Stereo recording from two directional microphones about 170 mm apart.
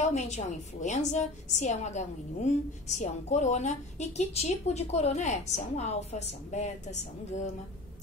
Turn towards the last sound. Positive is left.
turn(degrees=45)  # may be behind; listen again after turning